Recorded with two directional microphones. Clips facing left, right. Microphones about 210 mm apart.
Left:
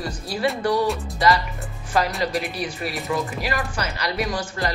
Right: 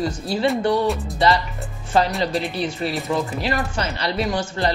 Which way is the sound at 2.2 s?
30° right (ahead or behind).